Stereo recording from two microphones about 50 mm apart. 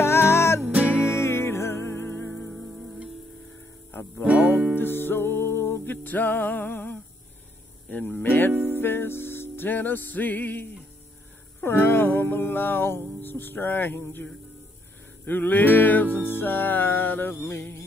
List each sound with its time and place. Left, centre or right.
0.0 s music: left
0.7 s music: right
1.0 s music: left
2.5 s music: centre
4.3 s music: right
4.7 s music: left
15.2 s music: left